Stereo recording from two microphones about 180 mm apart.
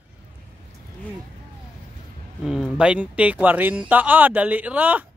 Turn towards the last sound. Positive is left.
turn(degrees=-10)  # may be behind; listen again after turning